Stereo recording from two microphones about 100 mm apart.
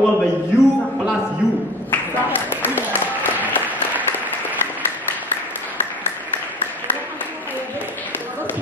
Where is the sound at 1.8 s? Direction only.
20° left (ahead or behind).